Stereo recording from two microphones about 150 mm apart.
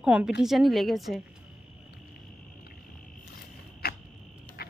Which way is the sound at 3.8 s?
90° left.